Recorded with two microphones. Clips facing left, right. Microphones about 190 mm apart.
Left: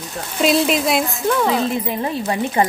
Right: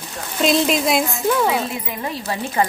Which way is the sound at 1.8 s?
25° left (ahead or behind).